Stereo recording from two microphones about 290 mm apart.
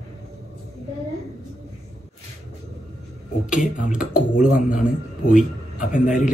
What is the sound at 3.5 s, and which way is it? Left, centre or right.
Speech, left.